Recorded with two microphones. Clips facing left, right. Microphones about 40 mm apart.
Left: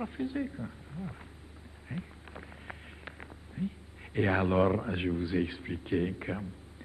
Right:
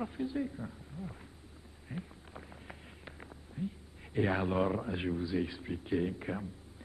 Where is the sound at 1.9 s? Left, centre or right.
Left.